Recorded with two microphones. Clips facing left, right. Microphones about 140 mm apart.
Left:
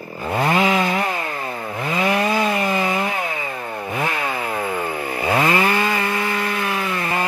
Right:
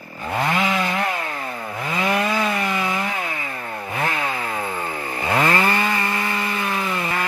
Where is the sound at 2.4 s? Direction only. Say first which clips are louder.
Left 3 dB; 35° left (ahead or behind).